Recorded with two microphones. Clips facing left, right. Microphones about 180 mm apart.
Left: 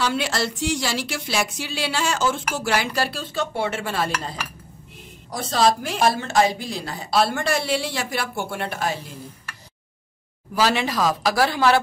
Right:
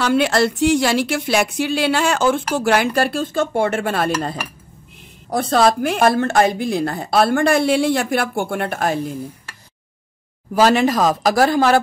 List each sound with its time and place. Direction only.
0.0 s a woman's voice: 55° right (ahead or behind)
10.5 s a woman's voice: 45° right (ahead or behind)